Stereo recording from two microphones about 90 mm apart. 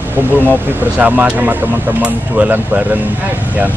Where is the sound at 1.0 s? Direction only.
20° right (ahead or behind).